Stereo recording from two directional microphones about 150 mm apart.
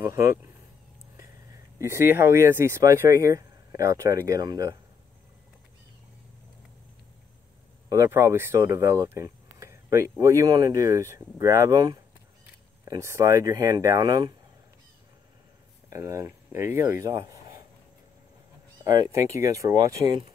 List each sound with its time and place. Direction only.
0.0 s speech: 20° right (ahead or behind)
1.8 s speech: 15° right (ahead or behind)
7.9 s speech: 15° right (ahead or behind)
15.9 s speech: 20° right (ahead or behind)
18.9 s speech: 25° right (ahead or behind)